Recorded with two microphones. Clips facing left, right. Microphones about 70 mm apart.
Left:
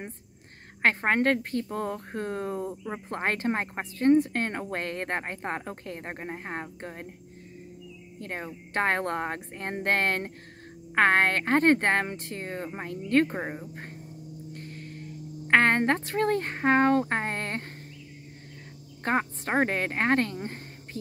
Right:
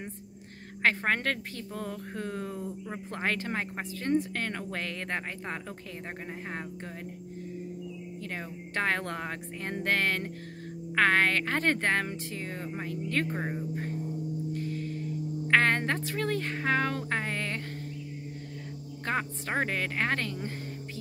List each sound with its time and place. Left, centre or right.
0.8 s a woman's voice: left
8.2 s a woman's voice: left
13.3 s speech: left
14.5 s gong: left
15.4 s a woman's voice: left
19.0 s a woman's voice: left
20.4 s music: left